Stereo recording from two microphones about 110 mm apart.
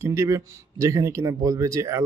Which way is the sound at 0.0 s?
25° right (ahead or behind).